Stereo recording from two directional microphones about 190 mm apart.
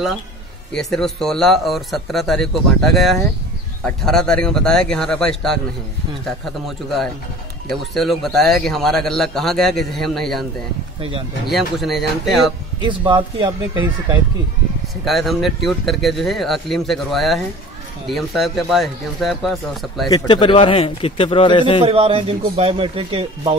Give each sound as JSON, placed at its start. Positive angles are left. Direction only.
{"t": 0.7, "sound": "a man's voice", "side_deg": 0}
{"t": 7.7, "sound": "a man's voice", "side_deg": 0}
{"t": 11.0, "sound": "speech", "side_deg": -25}
{"t": 11.4, "sound": "a man's voice", "side_deg": 0}
{"t": 12.8, "sound": "speech", "side_deg": -25}
{"t": 15.0, "sound": "a man's voice", "side_deg": 0}
{"t": 20.1, "sound": "a man's voice", "side_deg": 25}
{"t": 21.8, "sound": "a man's voice", "side_deg": -30}